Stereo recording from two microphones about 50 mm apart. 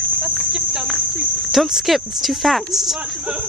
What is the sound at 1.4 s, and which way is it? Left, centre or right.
Speech, centre.